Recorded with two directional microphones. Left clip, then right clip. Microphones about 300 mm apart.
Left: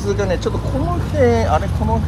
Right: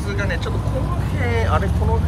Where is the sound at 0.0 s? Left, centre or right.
Centre.